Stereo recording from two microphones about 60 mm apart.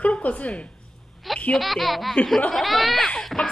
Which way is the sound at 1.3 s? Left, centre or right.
Centre.